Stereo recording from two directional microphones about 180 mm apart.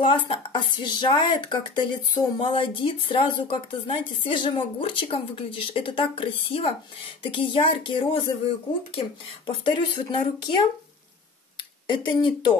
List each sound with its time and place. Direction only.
0.0 s speech: 30° left (ahead or behind)
9.5 s speech: 25° left (ahead or behind)